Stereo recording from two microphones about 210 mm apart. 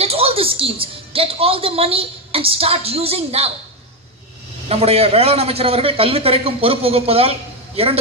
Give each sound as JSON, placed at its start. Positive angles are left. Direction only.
{"t": 0.0, "sound": "a woman's voice", "side_deg": -30}
{"t": 4.6, "sound": "a woman's voice", "side_deg": -30}